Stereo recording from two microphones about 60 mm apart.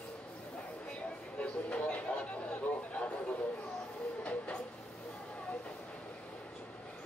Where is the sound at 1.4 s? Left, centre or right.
Left.